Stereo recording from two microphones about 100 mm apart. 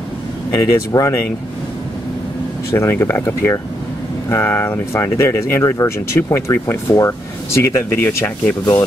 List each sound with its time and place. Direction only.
0.5 s speech: 35° left (ahead or behind)
2.7 s speech: 25° left (ahead or behind)